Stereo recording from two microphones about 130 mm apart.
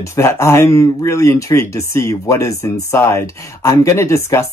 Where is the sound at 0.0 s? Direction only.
20° left (ahead or behind).